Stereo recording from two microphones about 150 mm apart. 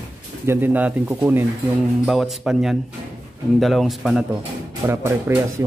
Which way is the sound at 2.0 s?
Centre (ahead or behind).